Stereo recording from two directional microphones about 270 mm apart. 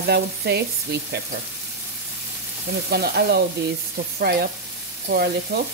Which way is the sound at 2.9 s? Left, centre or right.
Right.